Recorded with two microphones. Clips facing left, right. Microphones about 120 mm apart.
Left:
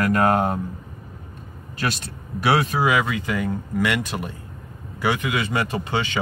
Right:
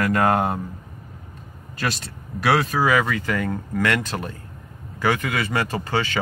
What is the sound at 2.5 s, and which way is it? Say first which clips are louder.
Speech: right 1 dB; 20° left (ahead or behind).